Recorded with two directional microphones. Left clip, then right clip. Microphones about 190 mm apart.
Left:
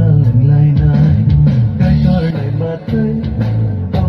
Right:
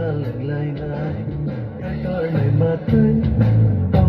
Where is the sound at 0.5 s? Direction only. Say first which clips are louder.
Left 9 dB; 55° left (ahead or behind).